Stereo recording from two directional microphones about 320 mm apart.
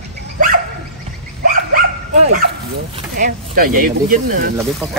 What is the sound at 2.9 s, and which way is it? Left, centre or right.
Speech, right.